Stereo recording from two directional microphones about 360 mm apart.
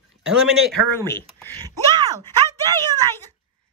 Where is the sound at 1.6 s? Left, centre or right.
Centre.